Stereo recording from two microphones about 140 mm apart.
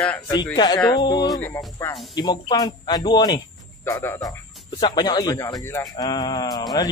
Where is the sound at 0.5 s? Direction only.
30° left (ahead or behind).